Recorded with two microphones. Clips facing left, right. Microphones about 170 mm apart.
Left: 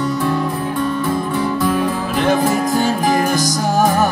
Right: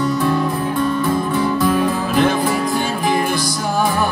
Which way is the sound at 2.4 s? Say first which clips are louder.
Left 3 dB; 45° left (ahead or behind).